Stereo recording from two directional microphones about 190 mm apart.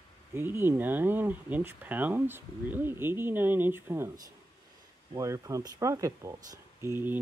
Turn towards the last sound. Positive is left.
turn(degrees=-10)  # may be behind; listen again after turning